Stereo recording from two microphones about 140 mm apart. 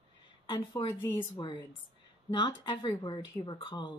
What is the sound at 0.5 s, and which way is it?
Speech, 35° left (ahead or behind).